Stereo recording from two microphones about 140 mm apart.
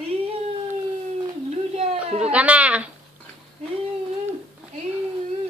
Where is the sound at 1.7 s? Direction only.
45° right (ahead or behind).